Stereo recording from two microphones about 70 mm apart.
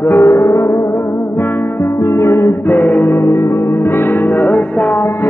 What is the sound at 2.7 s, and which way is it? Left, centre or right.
Music, left.